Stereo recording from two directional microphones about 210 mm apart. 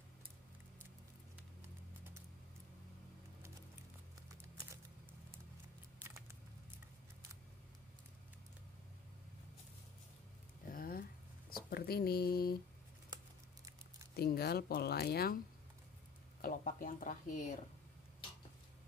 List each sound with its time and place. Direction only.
10.7 s a sound: 45° left (ahead or behind)
11.5 s speech: 45° left (ahead or behind)
14.1 s speech: 50° left (ahead or behind)